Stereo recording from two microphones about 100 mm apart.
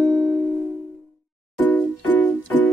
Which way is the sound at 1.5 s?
15° left (ahead or behind).